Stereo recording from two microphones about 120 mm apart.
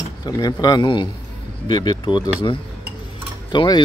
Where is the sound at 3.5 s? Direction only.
40° left (ahead or behind).